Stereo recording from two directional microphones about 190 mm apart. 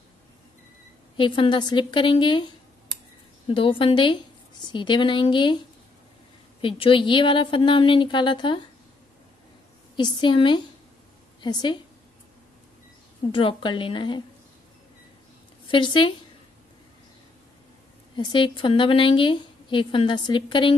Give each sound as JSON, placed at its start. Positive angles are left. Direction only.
{"t": 1.1, "sound": "a woman's voice", "side_deg": 25}
{"t": 3.4, "sound": "a woman's voice", "side_deg": 30}
{"t": 6.6, "sound": "a woman's voice", "side_deg": 25}
{"t": 9.9, "sound": "a woman's voice", "side_deg": 25}
{"t": 13.3, "sound": "a woman's voice", "side_deg": 25}
{"t": 15.7, "sound": "a woman's voice", "side_deg": 25}
{"t": 18.1, "sound": "a woman's voice", "side_deg": 25}